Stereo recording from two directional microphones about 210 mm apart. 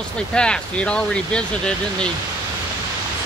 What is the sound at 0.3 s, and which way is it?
Speech, 5° left (ahead or behind).